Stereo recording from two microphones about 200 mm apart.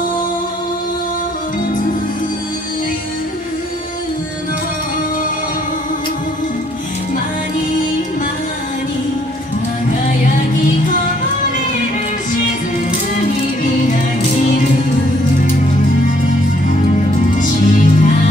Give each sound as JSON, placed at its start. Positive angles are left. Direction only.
{"t": 17.4, "sound": "music", "side_deg": 40}